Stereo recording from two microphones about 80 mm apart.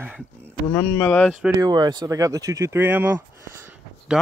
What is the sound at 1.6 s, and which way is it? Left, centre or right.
Speech, right.